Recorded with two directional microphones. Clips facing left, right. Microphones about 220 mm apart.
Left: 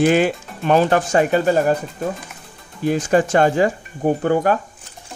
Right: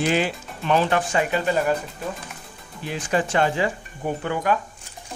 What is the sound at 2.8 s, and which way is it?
Speech, 45° left (ahead or behind).